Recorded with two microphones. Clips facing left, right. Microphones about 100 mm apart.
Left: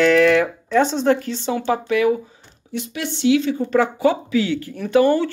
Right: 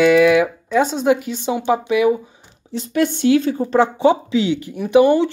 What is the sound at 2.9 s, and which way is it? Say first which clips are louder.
Speech: right 3 dB; 50° right (ahead or behind).